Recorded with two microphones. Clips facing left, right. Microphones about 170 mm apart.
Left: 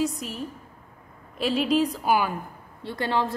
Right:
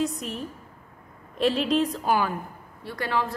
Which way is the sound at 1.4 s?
5° left (ahead or behind).